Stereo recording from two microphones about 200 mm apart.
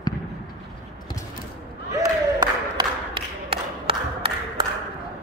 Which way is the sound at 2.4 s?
25° right (ahead or behind).